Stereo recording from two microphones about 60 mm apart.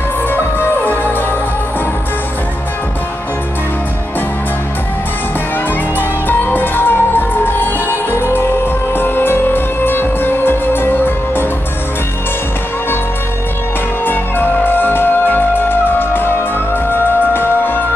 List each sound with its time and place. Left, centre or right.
0.3 s music: left
5.9 s music: left
14.0 s music: left